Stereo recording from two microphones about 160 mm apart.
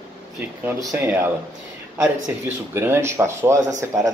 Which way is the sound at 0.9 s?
15° right (ahead or behind).